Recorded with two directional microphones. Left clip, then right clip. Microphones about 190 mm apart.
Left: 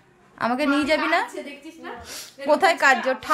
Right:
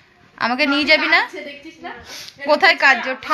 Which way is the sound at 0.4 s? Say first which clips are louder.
Right 4 dB; 10° left (ahead or behind).